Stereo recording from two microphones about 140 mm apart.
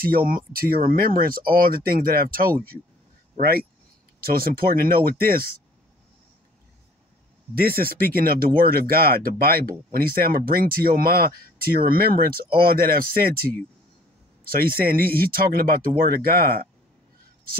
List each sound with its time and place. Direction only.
0.0 s speech: 90° right
7.5 s speech: 90° right